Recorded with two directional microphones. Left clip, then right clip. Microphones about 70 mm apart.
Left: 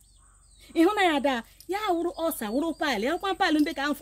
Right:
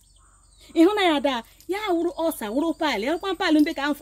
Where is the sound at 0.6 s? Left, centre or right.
Left.